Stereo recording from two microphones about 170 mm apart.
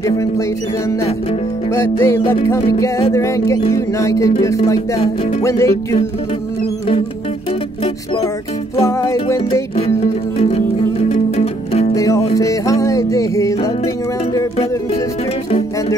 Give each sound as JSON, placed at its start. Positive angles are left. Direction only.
{"t": 1.7, "sound": "music", "side_deg": 15}
{"t": 8.8, "sound": "music", "side_deg": 20}
{"t": 11.1, "sound": "music", "side_deg": 40}
{"t": 11.9, "sound": "music", "side_deg": 20}